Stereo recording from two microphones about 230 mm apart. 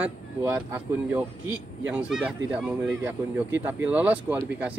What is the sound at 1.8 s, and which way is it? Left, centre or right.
A man's voice, centre.